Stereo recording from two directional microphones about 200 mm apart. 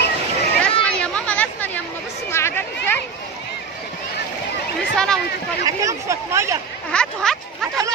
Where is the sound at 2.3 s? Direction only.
10° left (ahead or behind).